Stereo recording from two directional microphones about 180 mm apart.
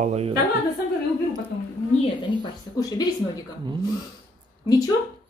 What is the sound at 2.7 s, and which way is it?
Speech, 20° left (ahead or behind).